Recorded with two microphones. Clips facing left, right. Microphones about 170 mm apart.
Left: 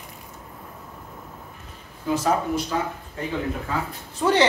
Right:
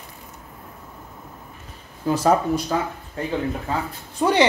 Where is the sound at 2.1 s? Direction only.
35° right (ahead or behind).